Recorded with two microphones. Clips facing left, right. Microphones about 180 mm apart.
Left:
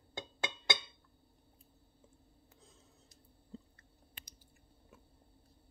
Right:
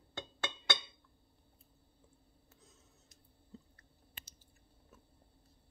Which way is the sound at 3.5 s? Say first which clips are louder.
Left 4 dB; 30° left (ahead or behind).